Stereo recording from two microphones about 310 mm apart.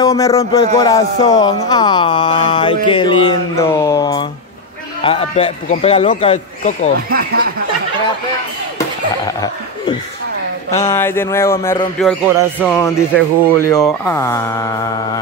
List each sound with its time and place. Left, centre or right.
0.0 s a man's voice: centre
7.1 s speech: right
10.7 s speech: centre